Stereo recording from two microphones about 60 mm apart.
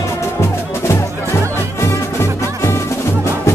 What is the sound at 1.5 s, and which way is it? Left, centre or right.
Music, left.